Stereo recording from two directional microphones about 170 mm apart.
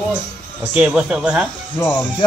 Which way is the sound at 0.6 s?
10° right (ahead or behind).